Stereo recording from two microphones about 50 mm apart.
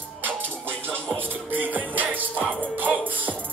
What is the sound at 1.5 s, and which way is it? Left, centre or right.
Music, right.